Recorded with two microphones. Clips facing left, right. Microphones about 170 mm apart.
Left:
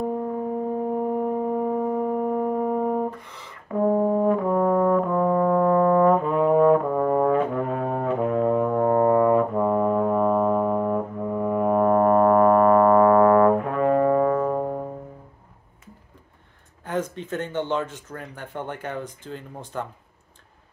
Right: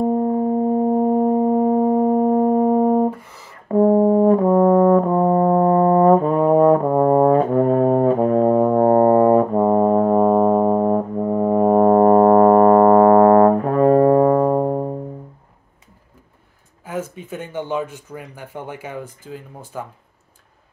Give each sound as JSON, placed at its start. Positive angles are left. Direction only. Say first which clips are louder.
{"t": 0.0, "sound": "music", "louder": "right 8 dB", "side_deg": -40}
{"t": 3.3, "sound": "a sound", "louder": "even", "side_deg": -10}
{"t": 3.6, "sound": "brass instrument", "louder": "right 7 dB", "side_deg": -40}
{"t": 16.8, "sound": "speech", "louder": "even", "side_deg": -5}